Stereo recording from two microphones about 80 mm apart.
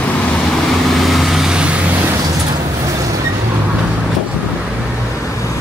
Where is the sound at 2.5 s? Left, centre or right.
Right.